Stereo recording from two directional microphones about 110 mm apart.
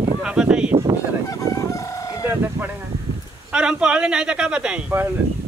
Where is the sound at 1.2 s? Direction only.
30° left (ahead or behind).